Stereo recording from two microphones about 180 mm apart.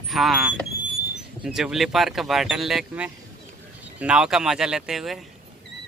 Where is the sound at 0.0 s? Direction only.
Centre (ahead or behind).